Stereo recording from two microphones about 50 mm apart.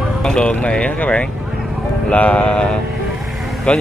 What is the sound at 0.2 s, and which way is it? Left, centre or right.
Speech, centre.